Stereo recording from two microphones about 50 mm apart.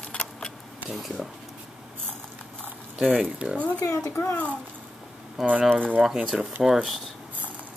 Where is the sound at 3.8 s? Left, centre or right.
Left.